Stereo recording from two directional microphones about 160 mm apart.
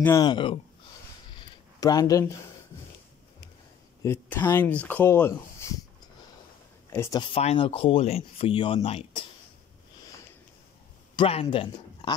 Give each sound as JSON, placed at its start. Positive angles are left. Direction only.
{"t": 0.0, "sound": "speech", "side_deg": 25}
{"t": 1.3, "sound": "a sound", "side_deg": 25}
{"t": 4.0, "sound": "speech", "side_deg": 15}
{"t": 6.9, "sound": "speech", "side_deg": 15}
{"t": 7.2, "sound": "speech", "side_deg": 35}
{"t": 11.1, "sound": "speech", "side_deg": 35}